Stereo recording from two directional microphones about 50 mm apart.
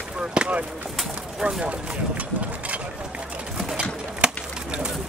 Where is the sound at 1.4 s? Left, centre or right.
Right.